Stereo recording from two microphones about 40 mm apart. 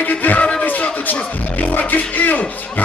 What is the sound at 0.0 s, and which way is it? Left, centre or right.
Speech, left.